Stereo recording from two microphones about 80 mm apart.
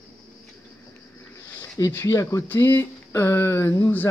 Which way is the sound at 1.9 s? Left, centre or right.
Left.